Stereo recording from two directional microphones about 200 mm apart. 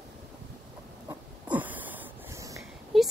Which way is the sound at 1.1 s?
10° right (ahead or behind).